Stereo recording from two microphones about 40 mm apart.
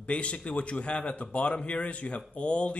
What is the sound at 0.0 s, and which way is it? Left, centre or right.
A man's voice, left.